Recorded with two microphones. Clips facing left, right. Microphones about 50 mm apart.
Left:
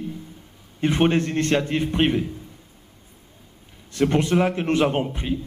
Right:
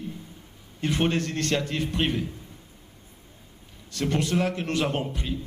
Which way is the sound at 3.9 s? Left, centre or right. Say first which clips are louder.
Left 6 dB; left.